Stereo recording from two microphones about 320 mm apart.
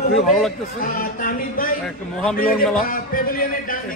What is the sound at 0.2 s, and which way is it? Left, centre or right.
Speech, centre.